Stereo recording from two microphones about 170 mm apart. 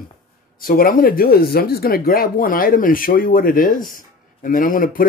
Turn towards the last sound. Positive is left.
turn(degrees=55)  # may be behind; listen again after turning